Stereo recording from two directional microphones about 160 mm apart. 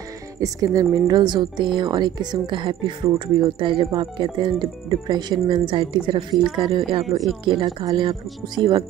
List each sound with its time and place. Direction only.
0.4 s a woman's voice: 20° right (ahead or behind)